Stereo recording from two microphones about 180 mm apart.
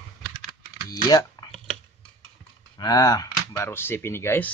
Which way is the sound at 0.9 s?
20° left (ahead or behind).